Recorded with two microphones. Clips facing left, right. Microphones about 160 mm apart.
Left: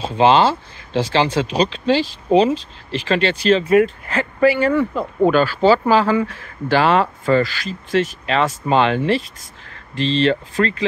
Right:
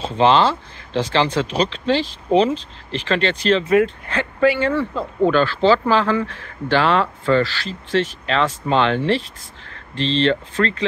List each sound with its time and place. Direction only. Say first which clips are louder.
0.0 s speech: left 1 dB; 10° left (ahead or behind)
3.5 s speech: left 2 dB; 45° left (ahead or behind)
4.1 s speech: left 1 dB; 5° left (ahead or behind)